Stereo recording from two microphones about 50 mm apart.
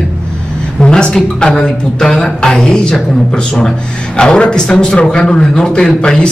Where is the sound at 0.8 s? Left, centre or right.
Centre.